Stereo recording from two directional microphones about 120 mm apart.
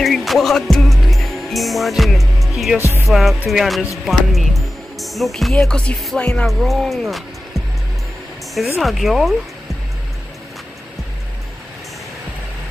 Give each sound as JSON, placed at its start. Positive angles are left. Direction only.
{"t": 0.0, "sound": "music", "side_deg": 0}
{"t": 2.8, "sound": "music", "side_deg": -20}
{"t": 3.1, "sound": "speech", "side_deg": 0}
{"t": 8.7, "sound": "speech", "side_deg": 0}